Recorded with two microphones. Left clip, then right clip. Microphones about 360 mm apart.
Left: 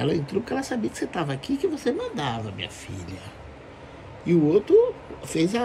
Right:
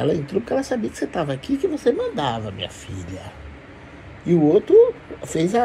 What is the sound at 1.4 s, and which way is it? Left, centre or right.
Speech, left.